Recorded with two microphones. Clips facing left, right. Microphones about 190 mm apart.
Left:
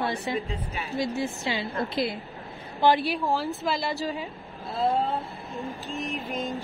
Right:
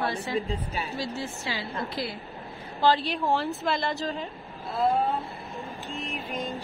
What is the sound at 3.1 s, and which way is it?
A woman's voice, centre (ahead or behind).